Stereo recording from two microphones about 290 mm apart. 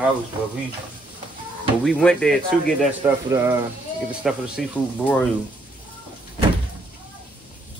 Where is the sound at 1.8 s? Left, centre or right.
Centre.